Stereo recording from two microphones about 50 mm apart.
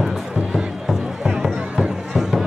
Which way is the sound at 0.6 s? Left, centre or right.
Centre.